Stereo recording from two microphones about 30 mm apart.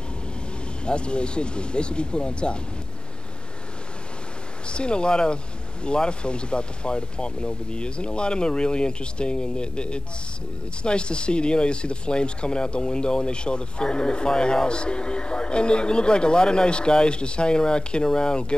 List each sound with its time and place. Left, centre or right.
0.8 s speech: left
4.6 s speech: left